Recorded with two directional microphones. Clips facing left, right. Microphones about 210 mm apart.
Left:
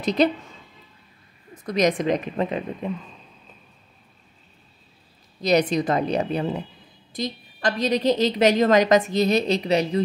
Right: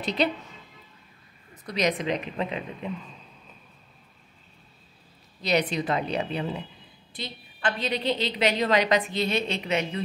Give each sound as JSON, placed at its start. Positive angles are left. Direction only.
{"t": 0.0, "sound": "a woman's voice", "side_deg": 40}
{"t": 1.5, "sound": "a woman's voice", "side_deg": 45}
{"t": 5.4, "sound": "a woman's voice", "side_deg": 40}